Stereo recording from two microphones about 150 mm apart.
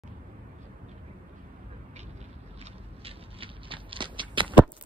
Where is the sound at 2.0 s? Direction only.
45° right (ahead or behind).